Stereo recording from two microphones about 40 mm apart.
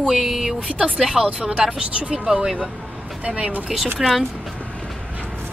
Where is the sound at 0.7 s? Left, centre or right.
Right.